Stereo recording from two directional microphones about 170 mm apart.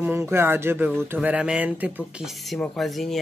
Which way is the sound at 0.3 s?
15° right (ahead or behind).